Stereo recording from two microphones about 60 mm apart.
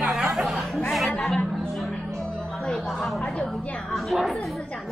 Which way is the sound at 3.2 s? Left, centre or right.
Centre.